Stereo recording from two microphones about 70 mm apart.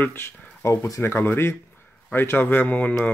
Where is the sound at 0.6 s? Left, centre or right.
Left.